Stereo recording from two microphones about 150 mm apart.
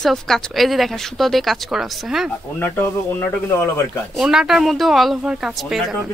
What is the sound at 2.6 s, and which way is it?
Speech, 15° left (ahead or behind).